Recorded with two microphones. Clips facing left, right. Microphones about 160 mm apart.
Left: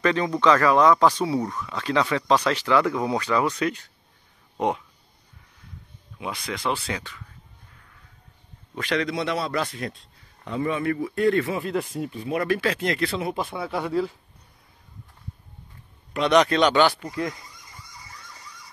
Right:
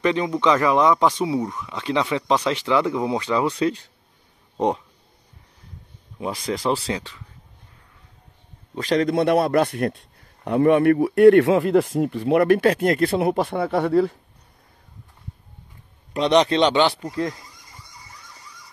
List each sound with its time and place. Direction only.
0.0 s speech: 15° right (ahead or behind); by 4.8 s 35° right (ahead or behind)
6.1 s speech: 40° right (ahead or behind)
8.7 s a man's voice: 40° right (ahead or behind); by 12.0 s 85° right
12.1 s a man's voice: 70° right (ahead or behind)
16.1 s speech: 30° right (ahead or behind)